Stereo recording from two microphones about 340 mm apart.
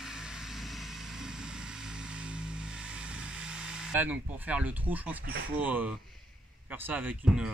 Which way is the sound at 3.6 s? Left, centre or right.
Centre.